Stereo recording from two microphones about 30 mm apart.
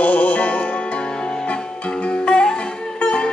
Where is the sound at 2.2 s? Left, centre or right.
Left.